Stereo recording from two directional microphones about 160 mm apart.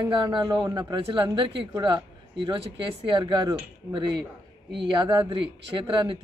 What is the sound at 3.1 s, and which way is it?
Speech, 30° right (ahead or behind).